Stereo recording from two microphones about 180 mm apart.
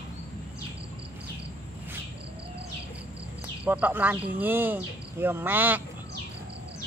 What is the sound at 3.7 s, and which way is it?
Speech, 10° right (ahead or behind).